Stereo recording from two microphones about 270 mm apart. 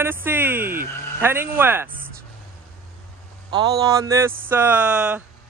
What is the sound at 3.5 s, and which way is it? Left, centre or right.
Speech, centre.